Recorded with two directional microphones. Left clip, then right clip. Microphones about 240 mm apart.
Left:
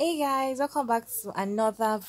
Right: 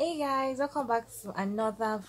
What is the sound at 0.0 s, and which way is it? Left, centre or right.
A woman's voice, left.